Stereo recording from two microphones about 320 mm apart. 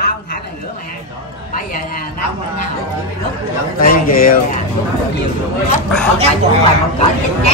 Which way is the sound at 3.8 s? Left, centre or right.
Left.